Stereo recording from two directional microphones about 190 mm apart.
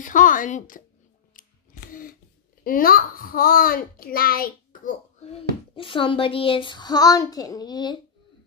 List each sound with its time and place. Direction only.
0.0 s a child's voice: 45° left (ahead or behind)
1.9 s a sound: 45° left (ahead or behind)
2.6 s a child's voice: 50° left (ahead or behind)
5.2 s a child's voice: 30° left (ahead or behind)